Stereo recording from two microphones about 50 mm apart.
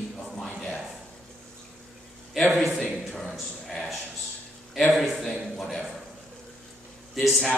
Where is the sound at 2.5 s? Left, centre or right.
Centre.